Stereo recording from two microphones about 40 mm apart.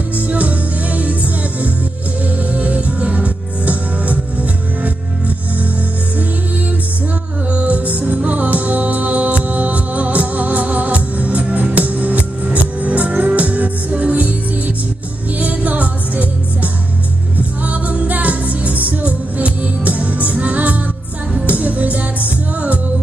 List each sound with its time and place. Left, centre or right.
0.3 s music: right
7.5 s music: right
15.3 s music: right